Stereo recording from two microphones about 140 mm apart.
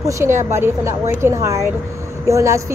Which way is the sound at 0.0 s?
20° right (ahead or behind).